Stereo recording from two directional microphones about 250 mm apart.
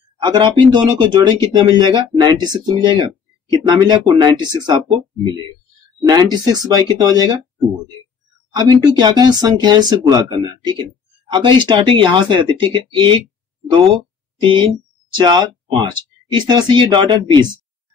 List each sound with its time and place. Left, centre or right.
0.2 s speech: centre
5.9 s speech: centre
8.5 s speech: centre
14.4 s speech: centre